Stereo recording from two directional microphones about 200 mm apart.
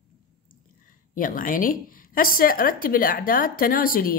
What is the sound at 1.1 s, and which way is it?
A woman's voice, 45° left (ahead or behind).